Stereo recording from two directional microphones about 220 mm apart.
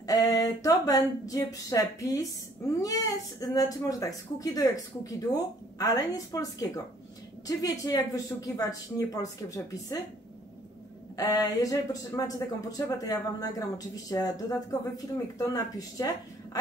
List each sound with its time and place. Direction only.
0.0 s speech: 15° left (ahead or behind)
11.1 s speech: 15° left (ahead or behind)